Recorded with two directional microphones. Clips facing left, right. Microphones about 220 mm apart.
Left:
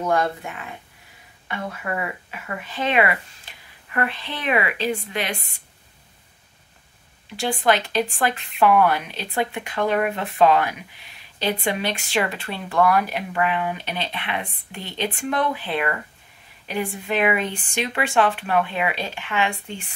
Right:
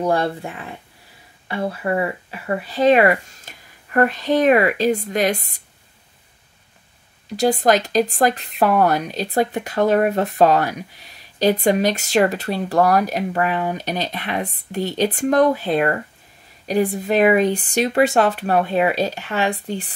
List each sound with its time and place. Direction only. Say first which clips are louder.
0.0 s speech: right 3 dB; 30° right (ahead or behind)
7.2 s speech: right 5 dB; 40° right (ahead or behind)